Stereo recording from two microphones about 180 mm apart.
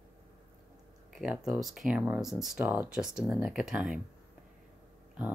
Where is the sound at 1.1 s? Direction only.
Centre (ahead or behind).